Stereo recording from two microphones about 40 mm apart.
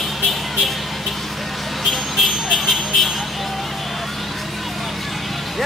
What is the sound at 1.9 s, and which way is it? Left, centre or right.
Vehicle, centre.